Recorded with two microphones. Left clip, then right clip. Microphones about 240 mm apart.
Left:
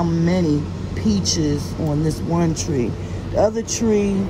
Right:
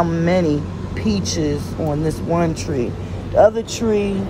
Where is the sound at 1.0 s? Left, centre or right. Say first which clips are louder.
Even; left.